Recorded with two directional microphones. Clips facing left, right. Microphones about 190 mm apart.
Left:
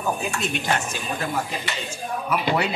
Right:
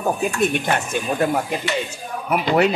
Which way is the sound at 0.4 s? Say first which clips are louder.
Right 5 dB; 55° right (ahead or behind).